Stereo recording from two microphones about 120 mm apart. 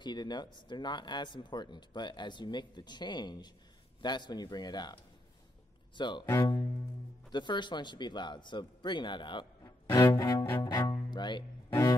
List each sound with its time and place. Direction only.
0.0 s speech: 35° left (ahead or behind)
6.2 s speech: 25° left (ahead or behind)
7.2 s speech: 40° left (ahead or behind)
9.9 s cello: 30° left (ahead or behind)